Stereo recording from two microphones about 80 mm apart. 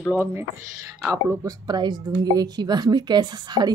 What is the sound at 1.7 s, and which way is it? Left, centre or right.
A woman's voice, right.